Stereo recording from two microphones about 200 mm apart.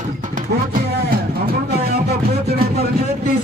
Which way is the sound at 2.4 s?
50° right (ahead or behind).